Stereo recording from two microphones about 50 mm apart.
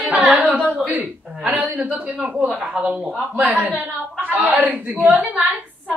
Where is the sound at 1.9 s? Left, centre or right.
Right.